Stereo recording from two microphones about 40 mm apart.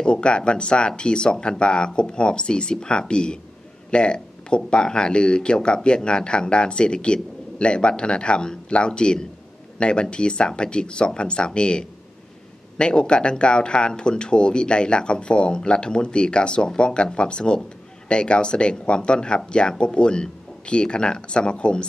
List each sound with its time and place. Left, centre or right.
0.0 s speech: left